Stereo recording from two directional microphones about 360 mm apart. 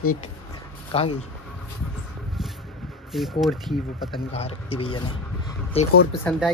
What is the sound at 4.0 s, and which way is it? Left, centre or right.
Speech, centre.